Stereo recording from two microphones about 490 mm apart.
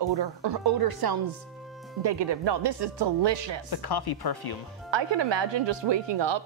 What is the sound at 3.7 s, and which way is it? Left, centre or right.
Speech, left.